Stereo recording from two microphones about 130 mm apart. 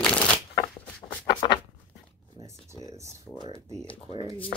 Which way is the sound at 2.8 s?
25° right (ahead or behind).